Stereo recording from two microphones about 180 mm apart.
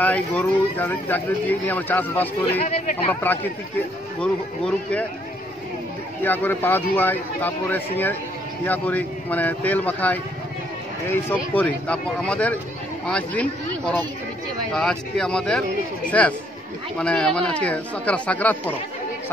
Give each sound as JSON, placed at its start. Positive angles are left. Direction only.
{"t": 0.0, "sound": "speech", "side_deg": 10}
{"t": 2.6, "sound": "speech", "side_deg": 40}
{"t": 3.1, "sound": "speech", "side_deg": 10}
{"t": 6.2, "sound": "speech", "side_deg": 10}
{"t": 11.5, "sound": "speech", "side_deg": 5}